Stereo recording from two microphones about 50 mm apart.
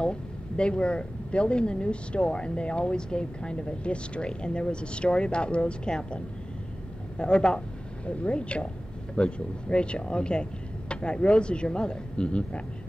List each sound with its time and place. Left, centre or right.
0.0 s speech: centre